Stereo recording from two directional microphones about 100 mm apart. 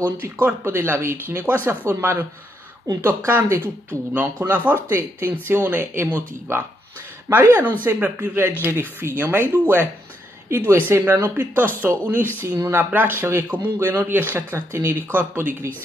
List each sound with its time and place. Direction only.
0.2 s speech: 20° right (ahead or behind)
12.4 s speech: 35° right (ahead or behind)
12.7 s speech: 20° right (ahead or behind)